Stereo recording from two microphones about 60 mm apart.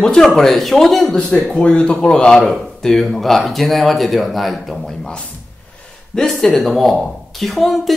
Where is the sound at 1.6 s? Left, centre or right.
Centre.